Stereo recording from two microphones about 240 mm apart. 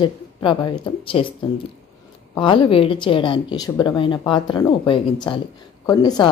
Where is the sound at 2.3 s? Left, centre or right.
Centre.